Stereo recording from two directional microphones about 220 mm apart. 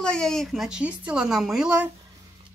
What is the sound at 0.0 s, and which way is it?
Speech, 5° left (ahead or behind).